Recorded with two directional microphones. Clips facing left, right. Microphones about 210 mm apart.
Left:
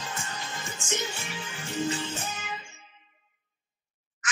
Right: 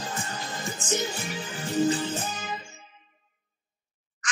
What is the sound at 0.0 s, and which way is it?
Music, 40° right (ahead or behind).